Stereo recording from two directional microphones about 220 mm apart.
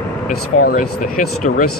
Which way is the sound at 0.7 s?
40° left (ahead or behind).